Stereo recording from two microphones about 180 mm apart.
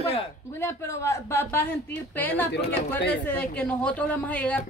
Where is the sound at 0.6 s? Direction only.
15° left (ahead or behind).